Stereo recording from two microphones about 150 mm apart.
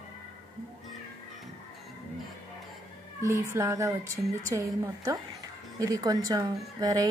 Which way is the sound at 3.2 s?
20° right (ahead or behind).